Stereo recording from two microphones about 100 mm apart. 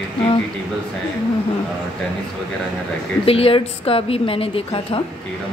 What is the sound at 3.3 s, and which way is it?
Speech, 70° left (ahead or behind).